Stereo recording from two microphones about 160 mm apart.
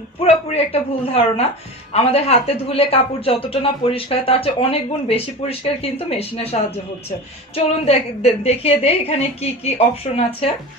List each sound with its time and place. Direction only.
0.2 s a woman's voice: 40° left (ahead or behind)